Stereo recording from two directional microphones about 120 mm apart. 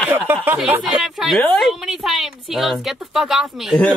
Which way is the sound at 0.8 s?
5° right (ahead or behind).